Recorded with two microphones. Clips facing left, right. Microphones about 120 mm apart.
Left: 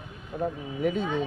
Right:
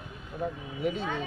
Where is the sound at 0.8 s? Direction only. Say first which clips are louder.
Left 4 dB; 45° left (ahead or behind).